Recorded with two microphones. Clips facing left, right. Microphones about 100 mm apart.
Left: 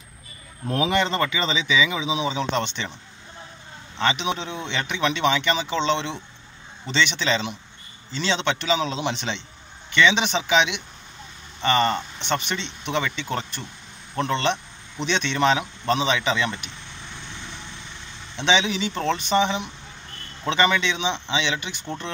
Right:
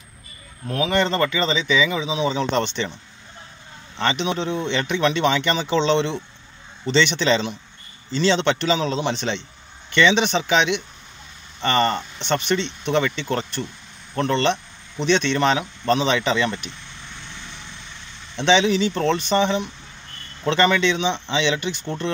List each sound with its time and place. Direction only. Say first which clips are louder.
0.7 s speech: even; 20° left (ahead or behind)
0.9 s speech: right 6 dB; 10° left (ahead or behind)
4.0 s speech: right 2 dB; 5° left (ahead or behind)
18.3 s speech: right 5 dB; 5° left (ahead or behind)